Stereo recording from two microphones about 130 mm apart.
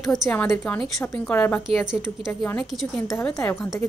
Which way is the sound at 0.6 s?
15° left (ahead or behind).